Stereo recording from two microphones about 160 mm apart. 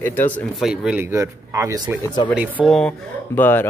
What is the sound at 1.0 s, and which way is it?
Speech, 15° right (ahead or behind).